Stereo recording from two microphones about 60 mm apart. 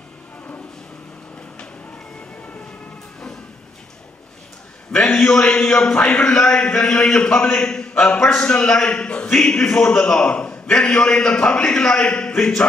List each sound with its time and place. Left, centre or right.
4.9 s a man's voice: centre